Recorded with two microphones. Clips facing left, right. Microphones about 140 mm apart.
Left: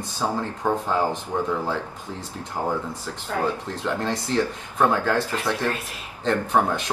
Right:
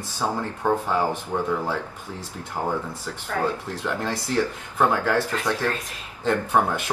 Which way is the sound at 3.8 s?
10° right (ahead or behind).